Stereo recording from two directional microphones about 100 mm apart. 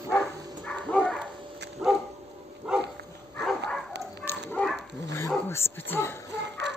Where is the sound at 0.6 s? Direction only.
10° left (ahead or behind).